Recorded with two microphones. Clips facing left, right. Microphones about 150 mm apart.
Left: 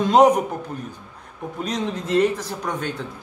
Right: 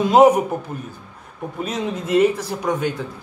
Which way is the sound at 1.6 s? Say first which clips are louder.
Right 1 dB; 5° right (ahead or behind).